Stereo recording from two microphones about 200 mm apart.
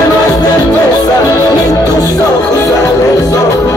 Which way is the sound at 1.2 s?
20° left (ahead or behind).